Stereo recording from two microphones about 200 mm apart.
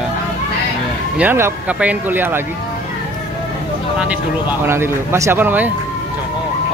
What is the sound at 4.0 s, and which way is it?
Speech, 10° right (ahead or behind).